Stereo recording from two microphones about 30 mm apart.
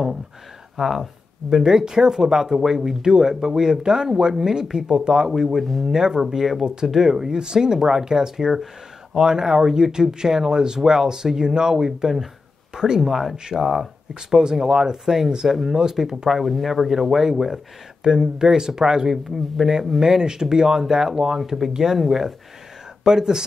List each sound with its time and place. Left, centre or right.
0.7 s speech: centre
1.5 s speech: right
5.6 s speech: centre
5.9 s speech: right
6.2 s speech: centre
6.6 s speech: right
13.5 s speech: centre
14.3 s speech: centre
16.3 s speech: centre
20.0 s speech: right
23.0 s speech: right